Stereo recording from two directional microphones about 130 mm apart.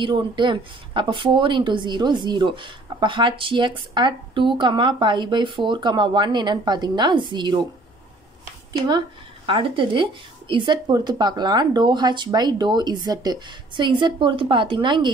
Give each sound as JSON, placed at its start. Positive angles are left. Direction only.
{"t": 0.0, "sound": "speech", "side_deg": -40}
{"t": 8.7, "sound": "speech", "side_deg": -35}